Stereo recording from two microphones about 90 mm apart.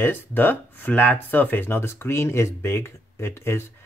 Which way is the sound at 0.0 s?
20° left (ahead or behind).